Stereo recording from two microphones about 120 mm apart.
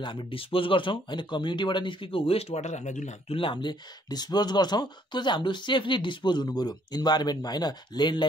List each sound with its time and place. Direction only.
0.0 s speech: 40° left (ahead or behind); by 3.3 s 80° left
3.3 s speech: 45° left (ahead or behind)